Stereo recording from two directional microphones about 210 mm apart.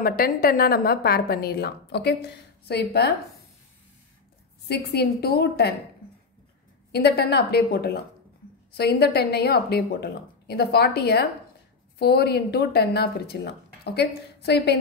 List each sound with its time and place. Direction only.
0.0 s a woman's voice: 45° left (ahead or behind)
4.6 s a woman's voice: 50° left (ahead or behind)
6.9 s a woman's voice: 50° left (ahead or behind)